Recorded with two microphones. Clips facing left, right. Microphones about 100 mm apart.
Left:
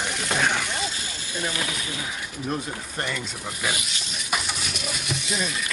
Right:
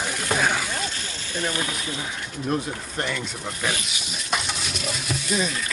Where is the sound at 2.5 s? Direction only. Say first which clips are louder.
Right 4 dB; centre (ahead or behind).